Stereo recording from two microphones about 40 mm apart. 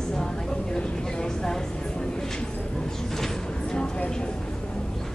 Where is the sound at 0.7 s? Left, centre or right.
Left.